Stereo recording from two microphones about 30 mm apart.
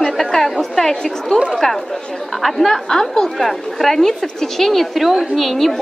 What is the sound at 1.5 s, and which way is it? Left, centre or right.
A woman's voice, centre.